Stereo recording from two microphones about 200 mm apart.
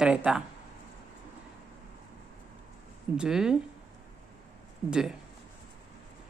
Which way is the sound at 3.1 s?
5° right (ahead or behind).